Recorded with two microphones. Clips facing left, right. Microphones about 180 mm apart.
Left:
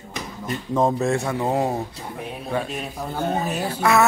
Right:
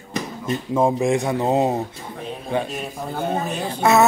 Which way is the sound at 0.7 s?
10° right (ahead or behind).